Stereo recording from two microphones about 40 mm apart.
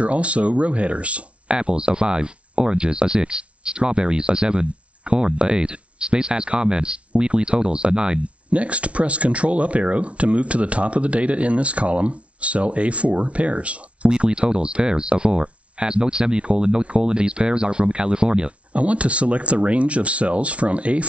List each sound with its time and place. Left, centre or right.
0.0 s speech: right
8.2 s speech: right